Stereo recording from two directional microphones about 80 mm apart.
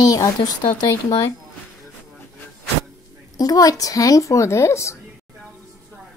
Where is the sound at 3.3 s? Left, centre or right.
Left.